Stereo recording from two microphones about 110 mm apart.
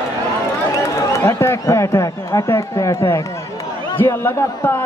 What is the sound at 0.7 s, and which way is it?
A man's voice, 25° left (ahead or behind).